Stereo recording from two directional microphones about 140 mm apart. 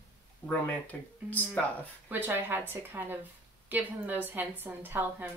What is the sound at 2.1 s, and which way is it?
A woman's voice, 15° right (ahead or behind).